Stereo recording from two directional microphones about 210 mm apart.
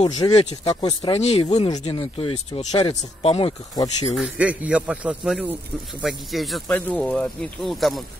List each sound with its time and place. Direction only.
0.0 s speech: 30° left (ahead or behind)
4.1 s speech: 5° right (ahead or behind)